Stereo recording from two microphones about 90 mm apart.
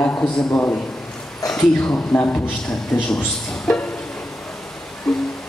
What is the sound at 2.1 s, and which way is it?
Speech, 20° left (ahead or behind).